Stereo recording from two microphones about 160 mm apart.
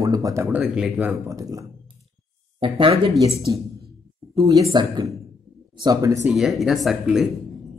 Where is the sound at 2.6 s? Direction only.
30° right (ahead or behind).